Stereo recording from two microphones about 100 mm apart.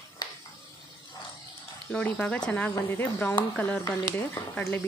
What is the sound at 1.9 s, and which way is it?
Speech, 15° left (ahead or behind).